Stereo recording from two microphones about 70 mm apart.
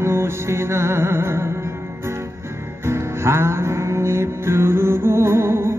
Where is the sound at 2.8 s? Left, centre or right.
Right.